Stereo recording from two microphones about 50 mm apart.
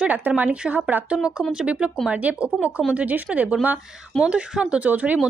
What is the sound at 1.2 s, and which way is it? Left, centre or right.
Speech, centre.